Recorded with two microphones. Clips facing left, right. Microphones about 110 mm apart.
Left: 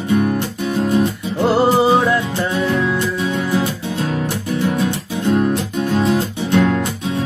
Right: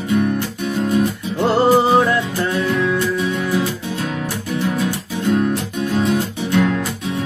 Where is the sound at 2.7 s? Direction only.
30° left (ahead or behind).